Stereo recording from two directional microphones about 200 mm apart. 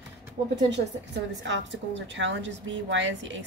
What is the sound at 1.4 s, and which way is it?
A woman's voice, 65° right (ahead or behind).